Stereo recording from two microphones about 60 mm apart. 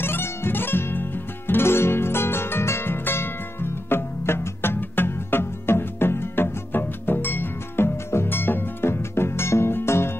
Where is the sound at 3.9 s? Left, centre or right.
Left.